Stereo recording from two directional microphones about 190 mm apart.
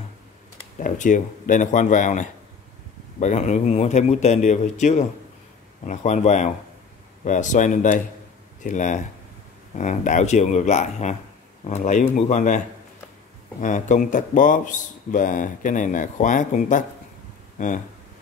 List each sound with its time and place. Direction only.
0.7 s a man's voice: 40° left (ahead or behind)